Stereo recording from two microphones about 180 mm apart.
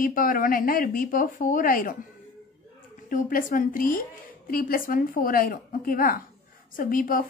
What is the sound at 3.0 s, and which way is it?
A woman's voice, 50° left (ahead or behind).